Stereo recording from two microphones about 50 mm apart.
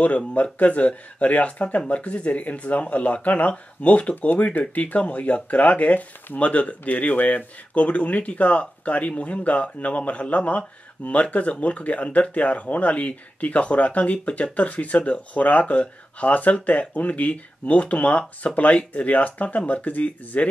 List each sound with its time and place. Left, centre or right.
0.3 s speech: left